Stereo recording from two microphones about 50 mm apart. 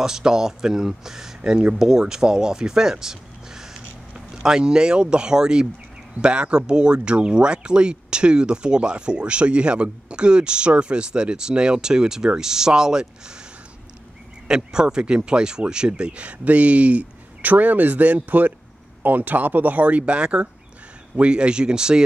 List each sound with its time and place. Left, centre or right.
0.0 s speech: centre
14.5 s speech: centre